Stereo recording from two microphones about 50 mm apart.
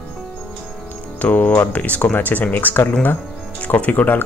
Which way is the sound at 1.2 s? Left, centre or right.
Left.